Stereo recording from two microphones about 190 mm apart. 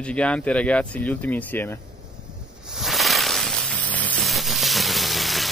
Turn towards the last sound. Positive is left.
turn(degrees=0)  # may be behind; listen again after turning